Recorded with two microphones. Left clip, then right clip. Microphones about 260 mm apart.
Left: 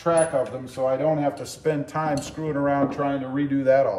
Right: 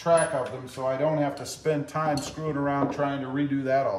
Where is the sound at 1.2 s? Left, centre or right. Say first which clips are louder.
Left 3 dB; centre.